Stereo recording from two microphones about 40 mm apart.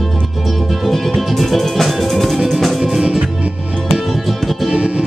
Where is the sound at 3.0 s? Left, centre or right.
Right.